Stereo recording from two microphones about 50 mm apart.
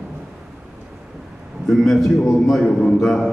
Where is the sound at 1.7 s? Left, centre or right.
Centre.